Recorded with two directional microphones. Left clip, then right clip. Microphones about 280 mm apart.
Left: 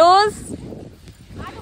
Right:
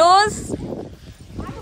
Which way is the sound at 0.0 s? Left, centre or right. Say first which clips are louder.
Left 1 dB; centre.